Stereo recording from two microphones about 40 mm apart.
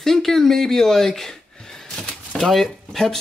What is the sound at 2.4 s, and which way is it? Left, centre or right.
Speech, centre.